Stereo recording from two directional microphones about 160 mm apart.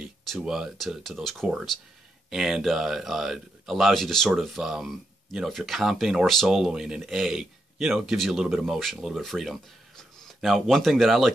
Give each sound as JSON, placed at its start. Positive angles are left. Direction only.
{"t": 0.0, "sound": "speech", "side_deg": -5}